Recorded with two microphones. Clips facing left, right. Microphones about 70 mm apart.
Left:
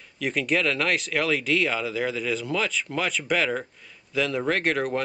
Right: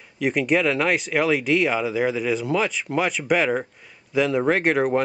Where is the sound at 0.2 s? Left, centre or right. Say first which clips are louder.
Right 4 dB; centre.